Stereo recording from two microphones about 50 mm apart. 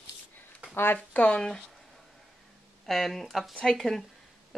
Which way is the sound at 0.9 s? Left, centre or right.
Left.